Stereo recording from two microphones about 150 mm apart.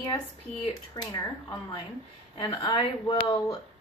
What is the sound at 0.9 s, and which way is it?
A woman's voice, 25° left (ahead or behind).